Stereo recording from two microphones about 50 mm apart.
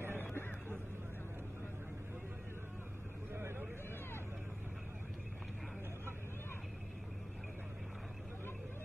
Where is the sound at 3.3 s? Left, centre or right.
Right.